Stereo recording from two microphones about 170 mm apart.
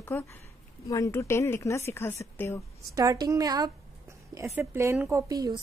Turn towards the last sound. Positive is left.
turn(degrees=-20)  # may be behind; listen again after turning